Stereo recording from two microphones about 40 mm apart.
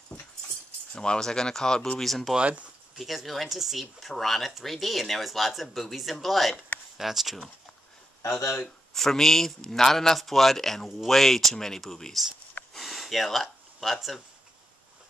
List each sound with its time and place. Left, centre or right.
0.9 s a man's voice: left
2.0 s speech: centre
2.3 s speech: right
3.0 s speech: centre
3.8 s speech: centre
8.9 s a man's voice: centre
12.7 s gasp: centre